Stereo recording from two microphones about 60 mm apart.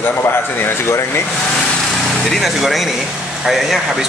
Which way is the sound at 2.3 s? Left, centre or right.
Centre.